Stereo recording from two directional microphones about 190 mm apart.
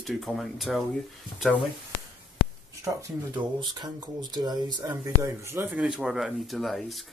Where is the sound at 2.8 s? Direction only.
15° right (ahead or behind).